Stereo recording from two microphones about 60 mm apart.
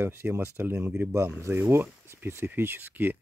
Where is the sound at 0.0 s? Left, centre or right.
Right.